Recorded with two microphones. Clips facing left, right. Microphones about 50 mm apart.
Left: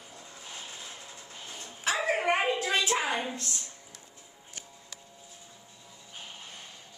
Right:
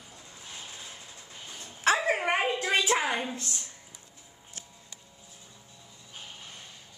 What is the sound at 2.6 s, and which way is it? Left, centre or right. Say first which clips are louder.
Speech: right 2 dB; right.